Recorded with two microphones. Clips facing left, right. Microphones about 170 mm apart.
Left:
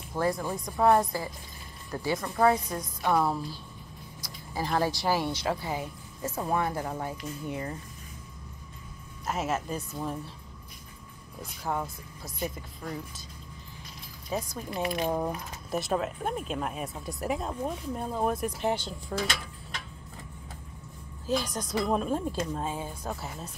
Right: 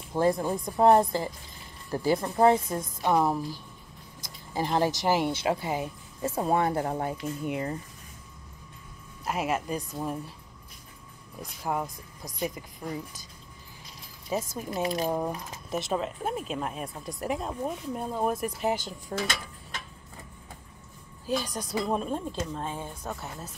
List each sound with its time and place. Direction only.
0.2 s a woman's voice: 25° right (ahead or behind)
6.2 s a woman's voice: 30° right (ahead or behind)
7.4 s a woman's voice: 20° right (ahead or behind)
9.2 s speech: 10° right (ahead or behind)
11.6 s speech: 15° right (ahead or behind)
14.3 s a woman's voice: 20° right (ahead or behind)
15.0 s speech: centre (ahead or behind)
21.3 s speech: 5° right (ahead or behind)